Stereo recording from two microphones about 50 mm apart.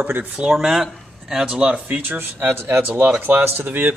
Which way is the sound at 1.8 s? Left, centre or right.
Right.